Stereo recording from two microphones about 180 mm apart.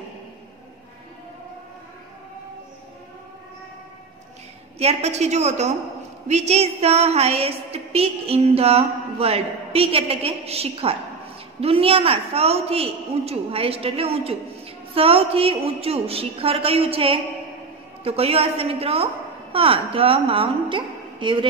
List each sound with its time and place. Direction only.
4.7 s a woman's voice: 35° right (ahead or behind)